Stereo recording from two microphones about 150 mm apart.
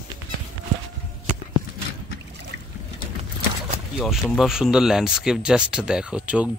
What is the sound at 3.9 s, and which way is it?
Speech, centre (ahead or behind).